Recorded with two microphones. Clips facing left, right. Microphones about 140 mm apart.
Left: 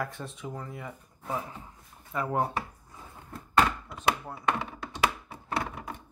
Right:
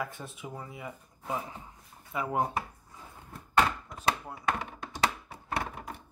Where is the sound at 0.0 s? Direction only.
Centre (ahead or behind).